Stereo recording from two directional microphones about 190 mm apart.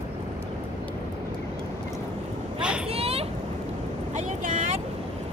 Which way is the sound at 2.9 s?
30° right (ahead or behind).